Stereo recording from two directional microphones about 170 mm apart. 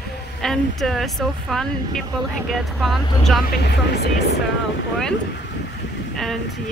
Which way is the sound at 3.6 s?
75° left (ahead or behind).